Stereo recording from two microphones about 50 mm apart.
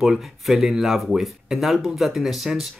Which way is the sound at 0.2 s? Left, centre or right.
Centre.